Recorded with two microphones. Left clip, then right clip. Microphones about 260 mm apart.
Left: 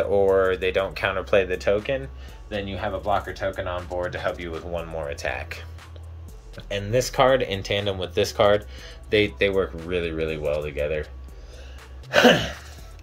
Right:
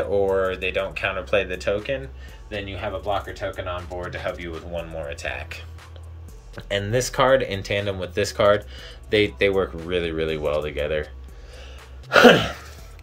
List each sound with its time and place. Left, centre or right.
0.1 s speech: centre
6.5 s speech: centre
12.1 s a sound: centre